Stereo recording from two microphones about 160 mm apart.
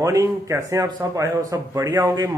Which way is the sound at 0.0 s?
20° right (ahead or behind).